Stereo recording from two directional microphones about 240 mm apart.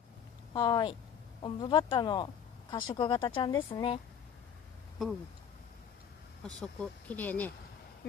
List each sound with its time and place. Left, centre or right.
0.5 s speech: centre
6.4 s speech: centre